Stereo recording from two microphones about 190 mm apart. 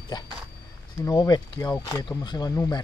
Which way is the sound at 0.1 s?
20° left (ahead or behind).